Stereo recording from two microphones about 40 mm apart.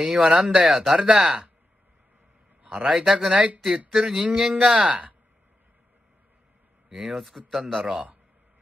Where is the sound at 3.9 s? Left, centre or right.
Right.